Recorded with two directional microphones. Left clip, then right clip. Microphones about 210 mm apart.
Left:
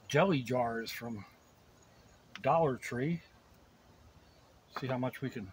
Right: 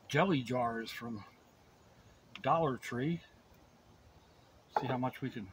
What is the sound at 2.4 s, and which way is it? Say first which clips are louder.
Speech: left 2 dB; 25° left (ahead or behind).